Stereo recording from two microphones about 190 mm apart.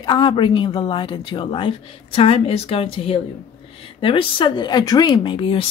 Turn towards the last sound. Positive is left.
turn(degrees=25)  # may be behind; listen again after turning